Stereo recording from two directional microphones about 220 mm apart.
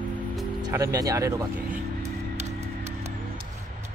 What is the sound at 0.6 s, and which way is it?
Speech, 15° right (ahead or behind).